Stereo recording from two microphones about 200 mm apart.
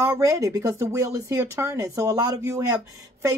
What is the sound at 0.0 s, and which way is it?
Speech, 15° right (ahead or behind).